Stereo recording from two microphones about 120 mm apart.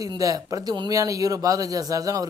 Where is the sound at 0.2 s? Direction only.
30° right (ahead or behind).